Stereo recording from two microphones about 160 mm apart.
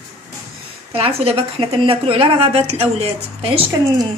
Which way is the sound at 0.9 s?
35° right (ahead or behind).